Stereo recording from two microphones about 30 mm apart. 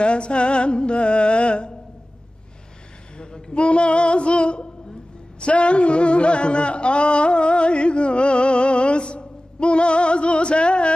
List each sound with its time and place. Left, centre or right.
0.0 s music: left
3.5 s music: left
5.4 s a sound: left